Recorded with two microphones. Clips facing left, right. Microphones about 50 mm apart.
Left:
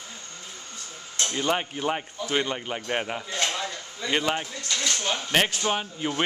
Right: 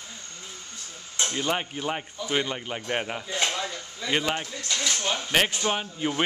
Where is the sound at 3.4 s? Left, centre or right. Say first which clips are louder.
Right 1 dB; centre.